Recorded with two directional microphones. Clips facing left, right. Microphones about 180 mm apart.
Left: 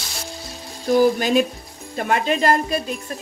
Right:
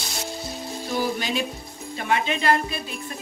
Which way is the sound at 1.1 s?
50° left (ahead or behind).